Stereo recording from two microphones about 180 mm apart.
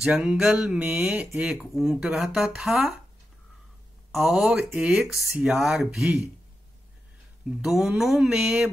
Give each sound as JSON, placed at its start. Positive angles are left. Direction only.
{"t": 0.0, "sound": "speech", "side_deg": -5}
{"t": 4.1, "sound": "speech", "side_deg": -5}
{"t": 7.6, "sound": "speech", "side_deg": -5}